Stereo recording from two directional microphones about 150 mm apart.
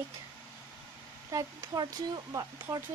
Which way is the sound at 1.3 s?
25° right (ahead or behind).